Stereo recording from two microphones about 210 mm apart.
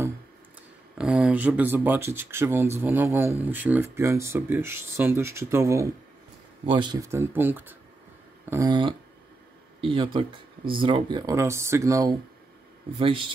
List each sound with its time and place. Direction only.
0.9 s speech: 5° right (ahead or behind); by 13.3 s 25° right (ahead or behind)